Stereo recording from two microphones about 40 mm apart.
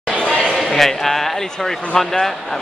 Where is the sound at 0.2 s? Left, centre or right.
Left.